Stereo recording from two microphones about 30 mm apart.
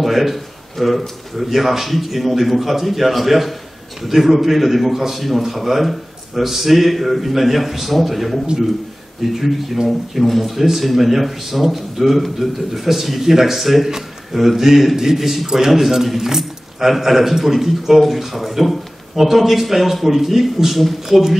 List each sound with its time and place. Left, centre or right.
0.0 s speech: centre
9.8 s speech: centre
13.8 s a man's voice: centre
15.8 s speech: centre